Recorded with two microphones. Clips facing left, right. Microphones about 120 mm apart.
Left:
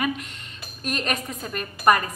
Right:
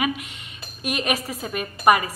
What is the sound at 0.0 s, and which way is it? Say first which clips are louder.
A woman's voice: right 1 dB; 10° right (ahead or behind).